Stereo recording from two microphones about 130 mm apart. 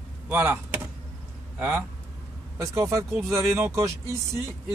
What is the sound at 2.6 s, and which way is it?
Speech, 25° right (ahead or behind).